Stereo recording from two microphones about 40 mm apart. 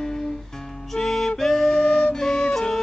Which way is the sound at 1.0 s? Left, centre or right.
Centre.